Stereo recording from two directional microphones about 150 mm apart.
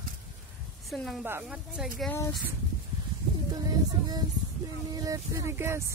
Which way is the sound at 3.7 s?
25° right (ahead or behind).